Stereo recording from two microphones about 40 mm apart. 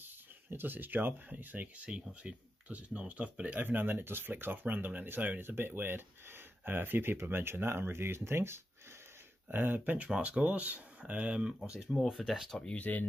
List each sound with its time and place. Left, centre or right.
0.0 s a sound: right
1.3 s speech: right
1.8 s speech: right
3.5 s speech: right
5.6 s speech: right
9.5 s speech: right
9.9 s speech: right
12.1 s speech: centre
12.7 s speech: left